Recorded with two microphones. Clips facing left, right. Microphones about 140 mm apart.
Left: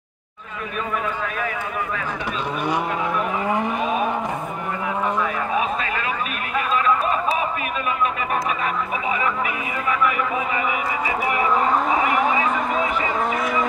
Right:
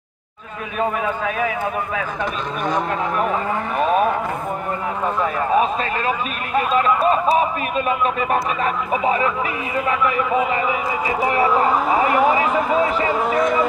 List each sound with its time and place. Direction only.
5.6 s speech: 35° right (ahead or behind)
7.3 s speech: 35° right (ahead or behind)
11.1 s speech: 35° right (ahead or behind)
12.2 s speech: 5° right (ahead or behind)
13.4 s speech: 5° left (ahead or behind)